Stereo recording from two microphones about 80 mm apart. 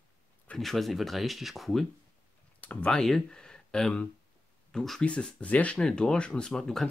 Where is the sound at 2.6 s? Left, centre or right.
Centre.